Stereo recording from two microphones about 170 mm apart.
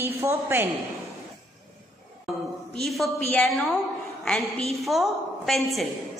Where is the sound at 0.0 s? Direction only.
15° right (ahead or behind).